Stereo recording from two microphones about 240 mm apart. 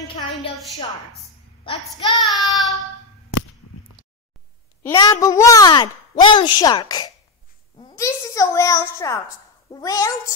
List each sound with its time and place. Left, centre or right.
2.2 s child singing: centre
4.8 s a woman's voice: centre